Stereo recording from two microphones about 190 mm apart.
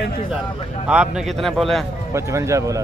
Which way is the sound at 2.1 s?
15° right (ahead or behind).